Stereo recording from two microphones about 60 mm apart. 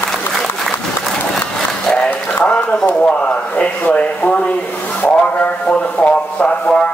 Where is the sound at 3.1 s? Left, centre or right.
Left.